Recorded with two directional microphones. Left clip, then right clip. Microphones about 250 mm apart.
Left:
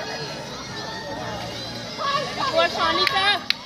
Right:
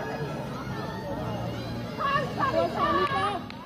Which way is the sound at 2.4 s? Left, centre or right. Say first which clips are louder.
Left 7 dB; left.